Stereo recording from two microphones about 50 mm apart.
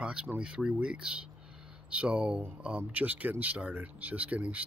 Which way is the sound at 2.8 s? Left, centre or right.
Right.